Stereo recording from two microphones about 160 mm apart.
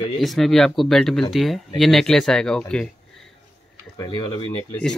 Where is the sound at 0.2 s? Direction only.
Centre (ahead or behind).